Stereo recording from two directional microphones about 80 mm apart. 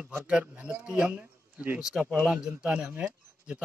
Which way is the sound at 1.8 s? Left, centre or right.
Centre.